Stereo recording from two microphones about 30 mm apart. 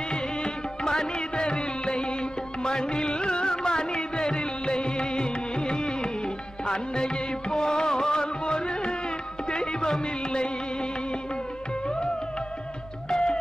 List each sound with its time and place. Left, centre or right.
0.1 s music: left
13.1 s music: left